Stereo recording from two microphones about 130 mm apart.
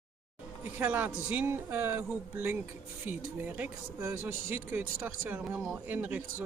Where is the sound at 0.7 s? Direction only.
15° right (ahead or behind).